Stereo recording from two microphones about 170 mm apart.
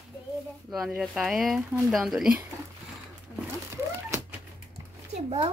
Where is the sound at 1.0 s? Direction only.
Centre (ahead or behind).